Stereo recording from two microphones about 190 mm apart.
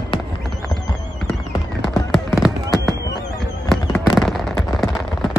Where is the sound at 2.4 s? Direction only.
Centre (ahead or behind).